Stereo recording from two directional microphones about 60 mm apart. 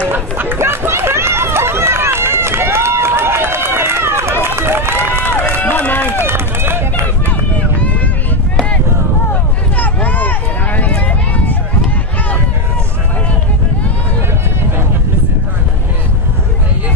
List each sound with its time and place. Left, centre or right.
0.1 s run: right
0.6 s run: right
5.6 s run: left
6.2 s run: right
9.3 s a sound: left